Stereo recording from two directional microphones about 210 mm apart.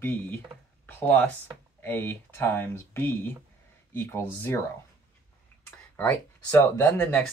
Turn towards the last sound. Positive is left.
turn(degrees=10)  # may be behind; listen again after turning